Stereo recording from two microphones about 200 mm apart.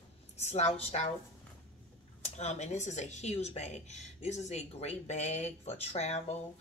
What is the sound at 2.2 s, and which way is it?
Speech, 35° left (ahead or behind).